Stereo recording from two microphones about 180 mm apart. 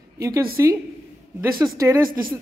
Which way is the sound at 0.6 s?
15° right (ahead or behind).